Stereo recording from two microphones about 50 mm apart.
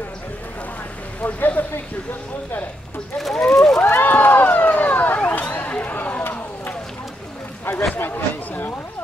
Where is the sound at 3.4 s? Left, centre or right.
Centre.